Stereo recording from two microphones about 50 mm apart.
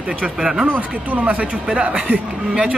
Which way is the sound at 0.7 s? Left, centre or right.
Right.